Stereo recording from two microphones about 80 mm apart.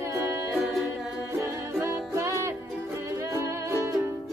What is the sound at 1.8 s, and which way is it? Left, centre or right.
Music, right.